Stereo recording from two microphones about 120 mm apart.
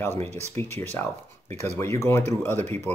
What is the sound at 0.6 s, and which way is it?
Speech, 55° right (ahead or behind).